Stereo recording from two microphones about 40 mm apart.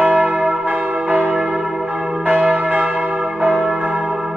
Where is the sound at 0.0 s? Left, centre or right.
Right.